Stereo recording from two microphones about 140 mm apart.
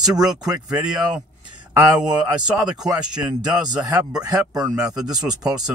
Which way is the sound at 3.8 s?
25° right (ahead or behind).